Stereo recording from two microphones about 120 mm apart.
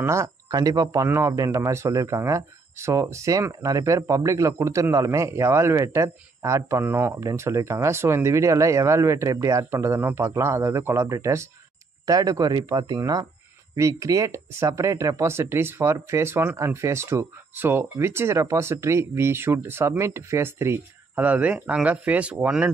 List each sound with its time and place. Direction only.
0.0 s speech: 25° right (ahead or behind); by 22.7 s 10° right (ahead or behind)